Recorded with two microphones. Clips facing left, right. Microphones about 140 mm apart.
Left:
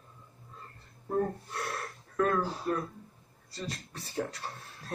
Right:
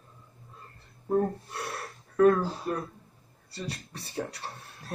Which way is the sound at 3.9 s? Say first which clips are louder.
Left 1 dB; 70° right (ahead or behind).